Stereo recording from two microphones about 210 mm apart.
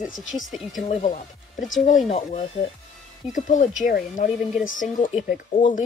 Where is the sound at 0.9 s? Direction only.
35° left (ahead or behind).